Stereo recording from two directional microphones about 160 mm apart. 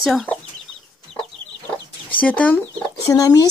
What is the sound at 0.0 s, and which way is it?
Speech, centre (ahead or behind).